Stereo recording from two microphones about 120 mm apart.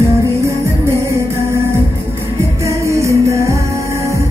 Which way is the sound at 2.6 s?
25° right (ahead or behind).